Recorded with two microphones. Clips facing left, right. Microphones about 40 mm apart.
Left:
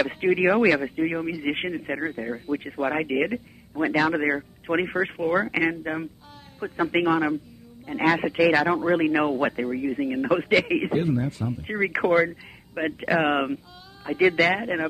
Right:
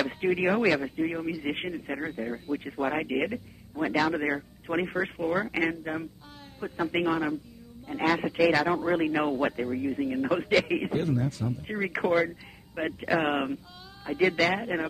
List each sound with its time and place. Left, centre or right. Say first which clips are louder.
0.0 s a man's voice: left 5 dB; centre
2.0 s speech: left 4 dB; centre
2.5 s a man's voice: left 4 dB; centre
11.4 s speech: left 5 dB; centre